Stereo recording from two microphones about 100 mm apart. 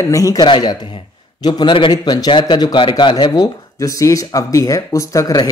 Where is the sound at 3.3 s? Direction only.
35° left (ahead or behind).